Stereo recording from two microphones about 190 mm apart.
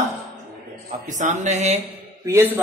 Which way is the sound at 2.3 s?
15° right (ahead or behind).